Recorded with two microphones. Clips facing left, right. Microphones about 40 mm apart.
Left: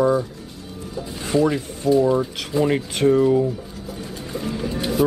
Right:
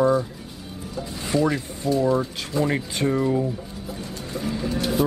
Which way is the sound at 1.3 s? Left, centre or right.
Centre.